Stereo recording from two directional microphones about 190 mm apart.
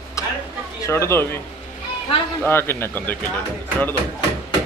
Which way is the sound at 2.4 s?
10° left (ahead or behind).